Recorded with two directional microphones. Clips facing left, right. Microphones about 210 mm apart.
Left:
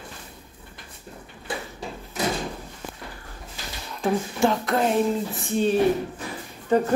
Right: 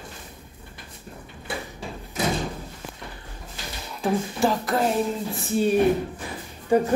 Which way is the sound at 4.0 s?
Centre (ahead or behind).